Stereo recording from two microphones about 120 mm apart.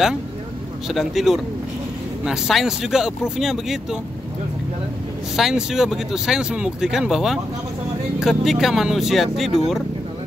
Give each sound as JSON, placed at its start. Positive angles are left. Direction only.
{"t": 0.8, "sound": "speech", "side_deg": 0}
{"t": 5.3, "sound": "speech", "side_deg": -5}